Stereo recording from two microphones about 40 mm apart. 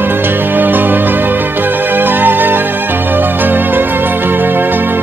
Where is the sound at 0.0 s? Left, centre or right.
Right.